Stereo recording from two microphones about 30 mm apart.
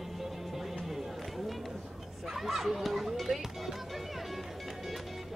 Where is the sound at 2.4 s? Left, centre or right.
Centre.